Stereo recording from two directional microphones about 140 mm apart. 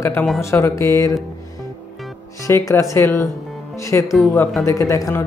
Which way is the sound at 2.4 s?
20° left (ahead or behind).